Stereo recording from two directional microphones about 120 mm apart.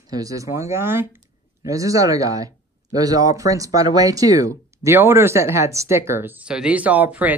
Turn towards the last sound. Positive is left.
turn(degrees=-15)  # may be behind; listen again after turning